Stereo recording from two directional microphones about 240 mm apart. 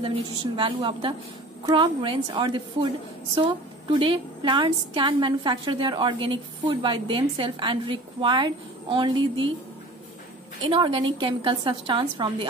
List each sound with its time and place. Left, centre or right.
0.0 s a woman's voice: right
10.7 s a woman's voice: right